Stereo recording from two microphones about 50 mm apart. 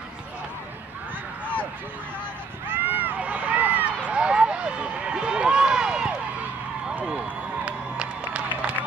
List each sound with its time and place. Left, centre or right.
2.7 s run: right
3.2 s run: right
4.0 s run: right
7.2 s crowd: right